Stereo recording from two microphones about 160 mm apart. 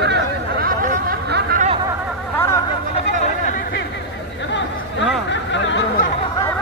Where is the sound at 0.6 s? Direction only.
60° right (ahead or behind).